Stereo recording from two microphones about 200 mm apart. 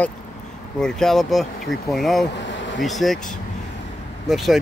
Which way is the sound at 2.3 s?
65° left (ahead or behind).